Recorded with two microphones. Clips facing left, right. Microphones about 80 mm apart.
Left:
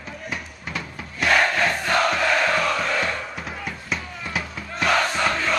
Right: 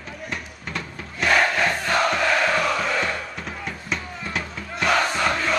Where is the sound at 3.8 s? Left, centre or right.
Centre.